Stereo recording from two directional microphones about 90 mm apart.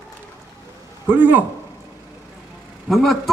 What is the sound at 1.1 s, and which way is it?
Speech, 20° right (ahead or behind).